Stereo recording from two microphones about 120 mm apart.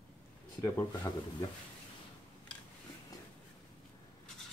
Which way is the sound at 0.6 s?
30° left (ahead or behind).